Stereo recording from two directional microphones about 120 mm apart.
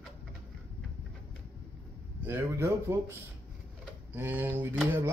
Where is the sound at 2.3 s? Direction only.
20° right (ahead or behind).